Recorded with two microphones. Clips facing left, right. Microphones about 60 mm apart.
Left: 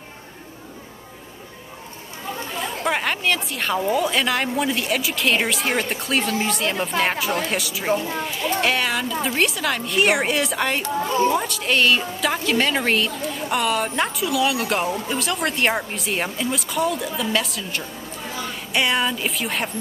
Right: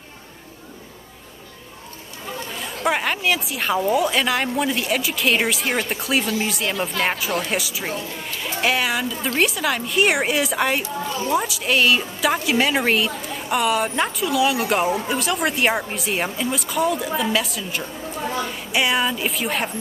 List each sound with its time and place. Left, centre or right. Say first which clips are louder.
2.8 s a woman's voice: right 2 dB; centre
11.1 s a woman's voice: left 8 dB; left
11.3 s a woman's voice: right 1 dB; centre